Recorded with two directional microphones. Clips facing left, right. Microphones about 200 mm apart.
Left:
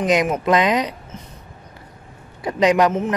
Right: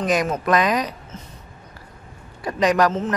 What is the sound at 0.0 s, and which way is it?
Speech, 20° left (ahead or behind).